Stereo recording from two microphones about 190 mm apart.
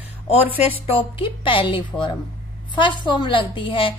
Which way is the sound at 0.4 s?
10° right (ahead or behind).